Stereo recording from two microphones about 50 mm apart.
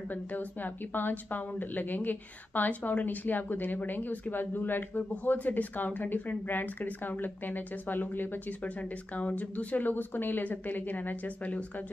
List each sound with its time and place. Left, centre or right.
0.1 s a woman's voice: left
8.6 s a woman's voice: left